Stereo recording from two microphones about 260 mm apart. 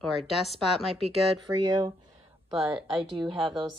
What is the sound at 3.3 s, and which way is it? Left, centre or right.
Speech, centre.